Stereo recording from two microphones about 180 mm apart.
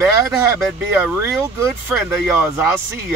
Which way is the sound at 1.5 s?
10° right (ahead or behind).